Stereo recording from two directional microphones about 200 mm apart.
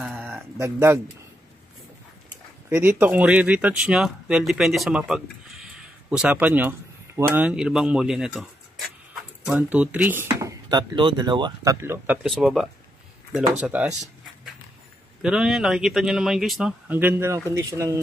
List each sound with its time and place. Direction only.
0.0 s a sound: 5° right (ahead or behind)
2.7 s speech: 10° right (ahead or behind)
15.2 s speech: 5° right (ahead or behind)